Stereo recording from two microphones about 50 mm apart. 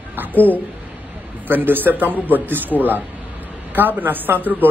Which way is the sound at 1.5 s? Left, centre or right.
Right.